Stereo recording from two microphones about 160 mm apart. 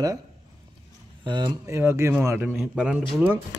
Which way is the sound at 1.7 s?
15° right (ahead or behind).